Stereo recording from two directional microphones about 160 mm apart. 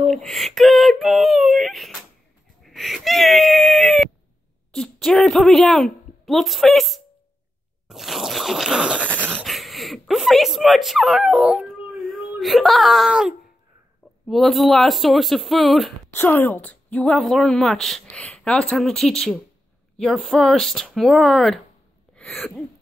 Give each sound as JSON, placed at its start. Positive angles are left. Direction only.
{"t": 0.1, "sound": "a woman's voice", "side_deg": 0}
{"t": 2.6, "sound": "wail", "side_deg": 0}
{"t": 4.7, "sound": "a woman's voice", "side_deg": 5}
{"t": 7.9, "sound": "zipper", "side_deg": 0}
{"t": 9.3, "sound": "a woman's voice", "side_deg": 0}
{"t": 16.2, "sound": "a woman's voice", "side_deg": 10}
{"t": 22.1, "sound": "throat clearing", "side_deg": 0}